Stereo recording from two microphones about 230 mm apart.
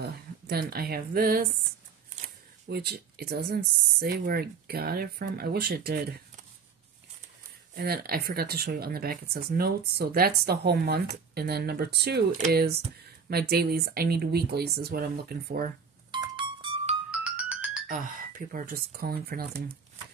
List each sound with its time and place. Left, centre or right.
0.0 s speech: right
2.7 s speech: right
7.7 s speech: right
16.1 s music: centre
17.2 s music: centre
17.8 s speech: right